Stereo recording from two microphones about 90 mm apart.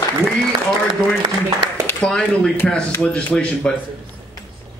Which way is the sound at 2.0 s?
10° left (ahead or behind).